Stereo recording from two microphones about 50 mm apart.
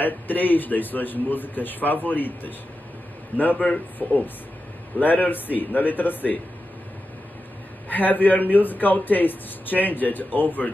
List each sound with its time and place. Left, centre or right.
0.0 s a man's voice: left
7.9 s a man's voice: left